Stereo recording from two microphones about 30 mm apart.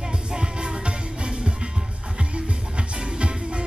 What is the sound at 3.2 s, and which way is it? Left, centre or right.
Music, right.